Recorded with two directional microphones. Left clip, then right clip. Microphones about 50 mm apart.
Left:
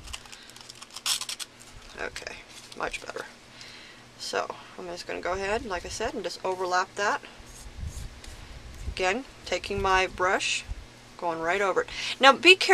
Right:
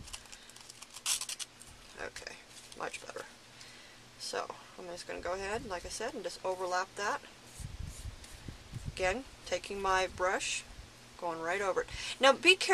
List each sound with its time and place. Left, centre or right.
0.9 s a sound: centre
2.0 s speech: left
4.2 s speech: left
8.9 s speech: centre